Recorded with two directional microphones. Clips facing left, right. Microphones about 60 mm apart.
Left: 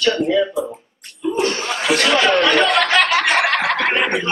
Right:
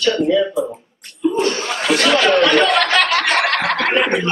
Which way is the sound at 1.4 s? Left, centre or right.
Centre.